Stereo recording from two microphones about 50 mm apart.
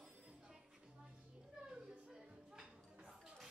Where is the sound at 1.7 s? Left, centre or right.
Centre.